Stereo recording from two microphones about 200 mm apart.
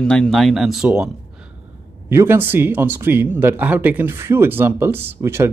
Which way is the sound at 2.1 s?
10° right (ahead or behind).